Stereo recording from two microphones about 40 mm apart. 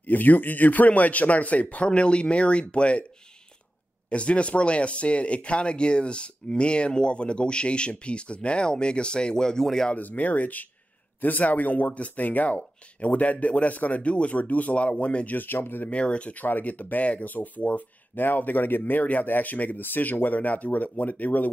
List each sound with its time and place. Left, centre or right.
0.0 s speech: left
4.1 s speech: left; by 9.8 s centre
9.9 s speech: left
15.3 s speech: left
15.9 s speech: left
16.4 s speech: left
18.2 s speech: left